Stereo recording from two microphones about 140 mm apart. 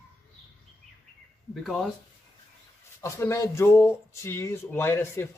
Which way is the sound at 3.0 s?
20° left (ahead or behind).